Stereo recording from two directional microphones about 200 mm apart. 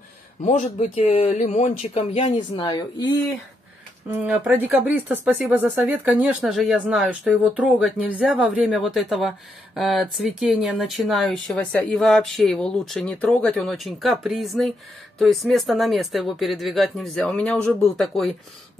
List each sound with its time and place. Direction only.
0.4 s speech: 35° left (ahead or behind)
4.1 s speech: 10° right (ahead or behind)